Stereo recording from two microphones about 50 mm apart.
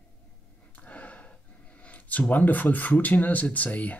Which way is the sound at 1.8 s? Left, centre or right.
Left.